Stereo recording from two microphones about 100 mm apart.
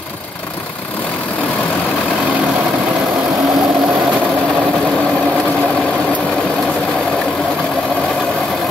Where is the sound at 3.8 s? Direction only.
Centre (ahead or behind).